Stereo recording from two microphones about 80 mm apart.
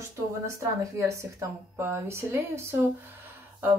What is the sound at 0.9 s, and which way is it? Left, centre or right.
A woman's voice, right.